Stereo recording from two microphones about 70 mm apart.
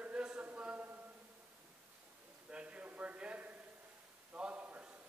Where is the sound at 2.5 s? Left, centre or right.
Centre.